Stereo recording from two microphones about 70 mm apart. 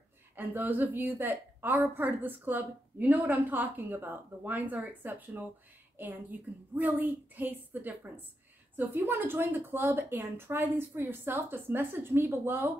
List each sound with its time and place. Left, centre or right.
0.4 s a woman's voice: right